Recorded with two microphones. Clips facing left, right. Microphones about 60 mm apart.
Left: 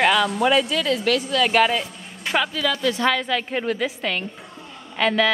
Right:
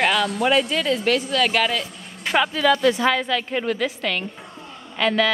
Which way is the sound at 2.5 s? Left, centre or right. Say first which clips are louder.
Right 5 dB; right.